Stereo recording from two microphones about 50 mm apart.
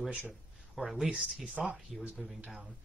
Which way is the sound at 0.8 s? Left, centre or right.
Centre.